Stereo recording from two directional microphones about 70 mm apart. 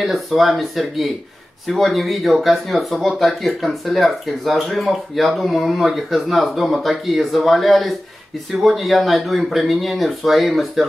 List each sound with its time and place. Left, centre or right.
0.0 s speech: centre